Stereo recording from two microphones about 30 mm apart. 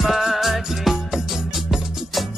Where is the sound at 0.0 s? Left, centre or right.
Centre.